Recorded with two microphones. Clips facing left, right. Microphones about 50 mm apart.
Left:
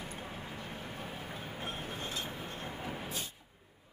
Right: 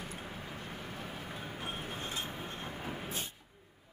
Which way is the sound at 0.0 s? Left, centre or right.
Centre.